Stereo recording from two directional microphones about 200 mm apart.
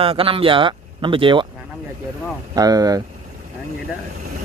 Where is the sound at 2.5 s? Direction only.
20° right (ahead or behind).